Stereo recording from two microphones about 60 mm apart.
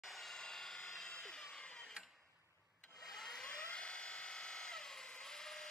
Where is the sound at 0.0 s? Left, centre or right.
Centre.